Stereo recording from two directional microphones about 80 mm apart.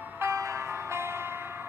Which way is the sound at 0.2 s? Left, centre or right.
Right.